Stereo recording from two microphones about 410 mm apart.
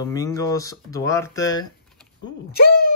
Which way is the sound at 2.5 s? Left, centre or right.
Left.